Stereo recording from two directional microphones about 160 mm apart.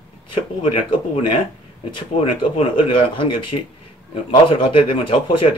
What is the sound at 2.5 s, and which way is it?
Speech, 30° left (ahead or behind).